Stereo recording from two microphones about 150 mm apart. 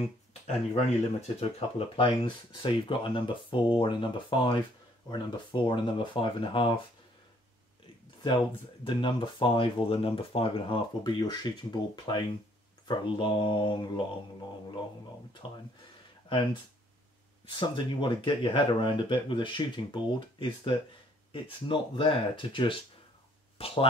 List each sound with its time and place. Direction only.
0.7 s speech: 45° left (ahead or behind)
8.2 s speech: 35° left (ahead or behind)
15.4 s speech: 35° left (ahead or behind)
17.6 s speech: 30° left (ahead or behind)